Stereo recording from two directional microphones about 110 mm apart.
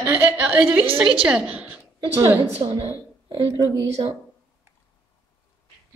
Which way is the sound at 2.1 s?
25° right (ahead or behind).